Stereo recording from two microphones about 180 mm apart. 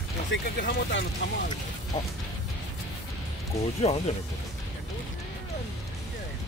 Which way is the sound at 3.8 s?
40° left (ahead or behind).